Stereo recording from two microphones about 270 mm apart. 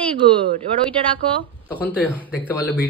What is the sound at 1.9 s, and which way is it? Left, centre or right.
Speech, centre.